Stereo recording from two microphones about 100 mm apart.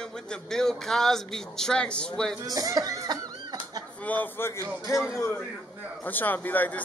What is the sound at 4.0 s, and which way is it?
Speech, 15° left (ahead or behind).